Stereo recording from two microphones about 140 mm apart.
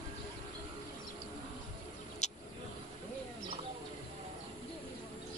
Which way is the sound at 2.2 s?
55° left (ahead or behind).